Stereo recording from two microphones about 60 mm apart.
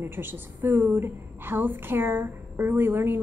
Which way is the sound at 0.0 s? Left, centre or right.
Right.